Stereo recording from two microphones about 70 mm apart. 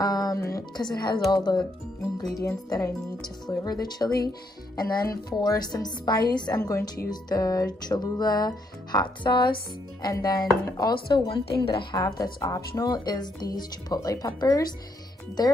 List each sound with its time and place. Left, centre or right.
0.0 s music: left
0.7 s speech: left
2.3 s speech: left
3.4 s a woman's voice: left
6.6 s speech: left
7.1 s a woman's voice: left
10.1 s speech: left
10.8 s a woman's voice: left